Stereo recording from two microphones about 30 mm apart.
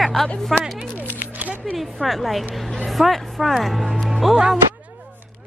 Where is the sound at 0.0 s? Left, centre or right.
Centre.